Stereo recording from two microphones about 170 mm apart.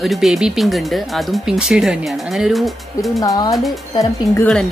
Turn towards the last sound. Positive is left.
turn(degrees=15)  # may be behind; listen again after turning